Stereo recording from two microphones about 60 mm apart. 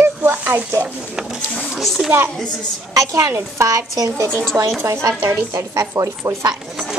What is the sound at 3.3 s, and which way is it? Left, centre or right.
Speech, right.